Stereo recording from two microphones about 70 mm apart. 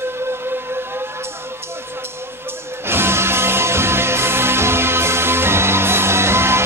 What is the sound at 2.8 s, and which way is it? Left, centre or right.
Music, right.